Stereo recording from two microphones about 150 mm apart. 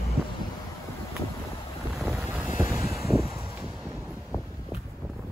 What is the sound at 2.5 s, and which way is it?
Vehicle, 20° right (ahead or behind).